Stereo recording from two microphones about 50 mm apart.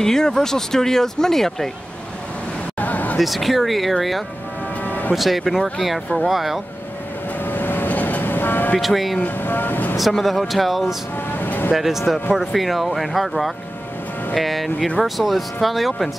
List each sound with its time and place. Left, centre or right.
0.0 s speech: centre
2.8 s a sound: left
3.2 s speech: centre
4.8 s music: left
5.1 s speech: centre
7.4 s vehicle: left
8.7 s speech: centre
9.2 s speech: left
9.9 s speech: centre
11.3 s vehicle: left
11.7 s speech: centre